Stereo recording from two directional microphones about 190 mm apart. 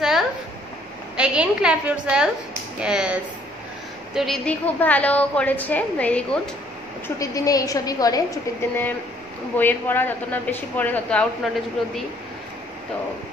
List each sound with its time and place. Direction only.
1.1 s a woman's voice: 5° right (ahead or behind)
7.2 s a woman's voice: 20° left (ahead or behind)